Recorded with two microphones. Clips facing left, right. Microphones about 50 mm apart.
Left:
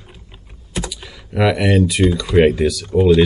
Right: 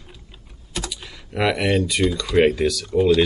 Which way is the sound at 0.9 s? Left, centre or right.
Centre.